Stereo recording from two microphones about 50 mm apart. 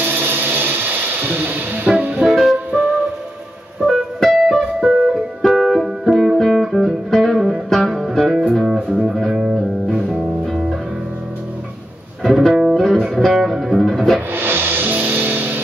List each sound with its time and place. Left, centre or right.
0.0 s music: right
1.9 s music: right
2.2 s music: centre
3.8 s music: centre
6.0 s music: centre
8.6 s music: centre
10.4 s music: centre
12.2 s music: centre
14.3 s music: right